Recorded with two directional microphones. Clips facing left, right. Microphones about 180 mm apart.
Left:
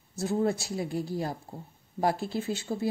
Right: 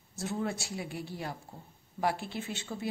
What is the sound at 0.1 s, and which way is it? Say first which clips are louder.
A woman's voice: left 7 dB; 35° left (ahead or behind).